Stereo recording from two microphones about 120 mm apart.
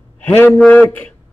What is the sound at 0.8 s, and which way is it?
Speech, 15° left (ahead or behind).